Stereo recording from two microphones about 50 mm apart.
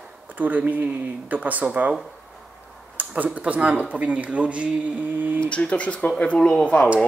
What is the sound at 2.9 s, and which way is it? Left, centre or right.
Speech, right.